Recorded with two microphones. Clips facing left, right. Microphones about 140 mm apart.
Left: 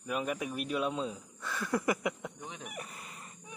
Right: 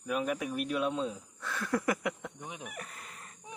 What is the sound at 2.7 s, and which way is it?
Chicken, 10° left (ahead or behind).